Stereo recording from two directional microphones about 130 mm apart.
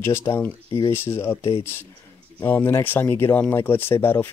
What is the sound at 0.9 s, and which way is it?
Speech, 20° left (ahead or behind).